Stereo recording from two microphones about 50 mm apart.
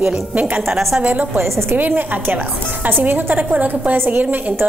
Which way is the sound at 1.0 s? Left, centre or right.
Right.